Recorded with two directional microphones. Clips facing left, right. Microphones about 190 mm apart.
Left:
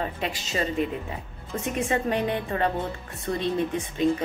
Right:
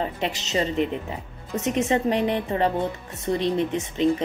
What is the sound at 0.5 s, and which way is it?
A woman's voice, 25° right (ahead or behind).